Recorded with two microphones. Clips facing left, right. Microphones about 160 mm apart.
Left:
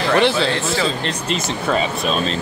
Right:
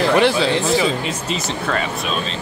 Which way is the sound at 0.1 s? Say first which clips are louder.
Left 3 dB; 10° right (ahead or behind).